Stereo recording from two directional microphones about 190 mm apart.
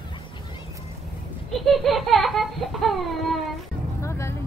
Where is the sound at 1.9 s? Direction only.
Centre (ahead or behind).